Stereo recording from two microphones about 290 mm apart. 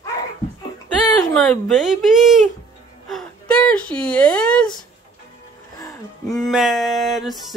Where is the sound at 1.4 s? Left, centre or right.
Centre.